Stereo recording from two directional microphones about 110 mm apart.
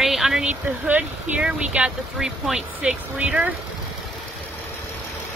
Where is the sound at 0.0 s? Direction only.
5° right (ahead or behind).